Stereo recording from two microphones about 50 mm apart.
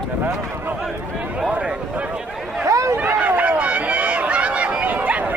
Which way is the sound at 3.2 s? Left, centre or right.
Right.